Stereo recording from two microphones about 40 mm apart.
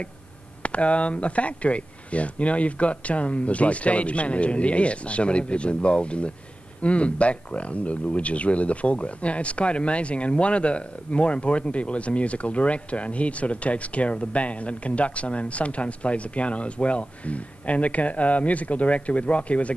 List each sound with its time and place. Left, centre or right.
0.6 s speech: left